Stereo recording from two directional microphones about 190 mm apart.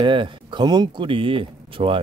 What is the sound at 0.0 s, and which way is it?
Speech, 25° right (ahead or behind).